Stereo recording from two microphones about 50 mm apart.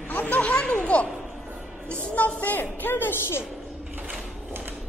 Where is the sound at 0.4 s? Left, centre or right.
Left.